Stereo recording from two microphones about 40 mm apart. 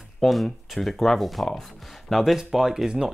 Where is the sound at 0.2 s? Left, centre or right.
Centre.